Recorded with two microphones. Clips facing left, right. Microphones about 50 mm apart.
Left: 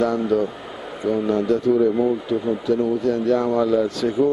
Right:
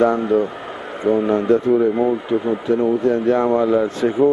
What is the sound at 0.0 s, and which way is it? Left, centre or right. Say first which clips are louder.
Speech: right 4 dB; right.